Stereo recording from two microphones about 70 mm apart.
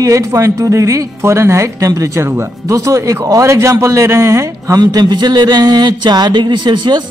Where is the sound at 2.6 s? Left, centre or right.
Right.